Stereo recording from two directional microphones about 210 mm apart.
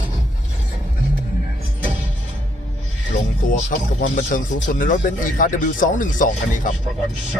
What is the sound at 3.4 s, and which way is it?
Music, 40° left (ahead or behind).